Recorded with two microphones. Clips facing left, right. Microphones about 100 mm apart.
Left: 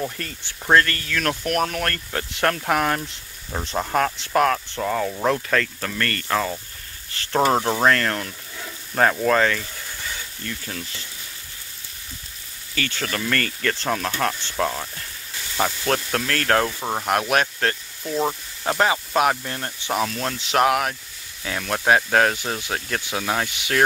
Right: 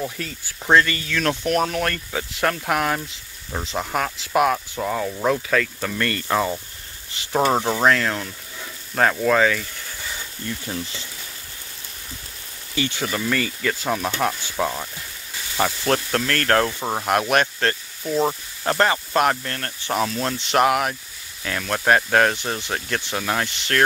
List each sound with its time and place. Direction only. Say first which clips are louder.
0.0 s speech: even; centre (ahead or behind)
7.3 s speech: even; centre (ahead or behind)
10.4 s speech: right 4 dB; 20° right (ahead or behind)
12.7 s speech: right 2 dB; 15° right (ahead or behind); by 19.5 s 5° left (ahead or behind)
19.5 s speech: even; 15° left (ahead or behind)
19.9 s speech: right 1 dB; centre (ahead or behind)